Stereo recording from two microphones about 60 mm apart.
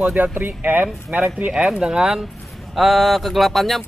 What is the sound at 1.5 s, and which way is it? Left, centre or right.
A man's voice, centre.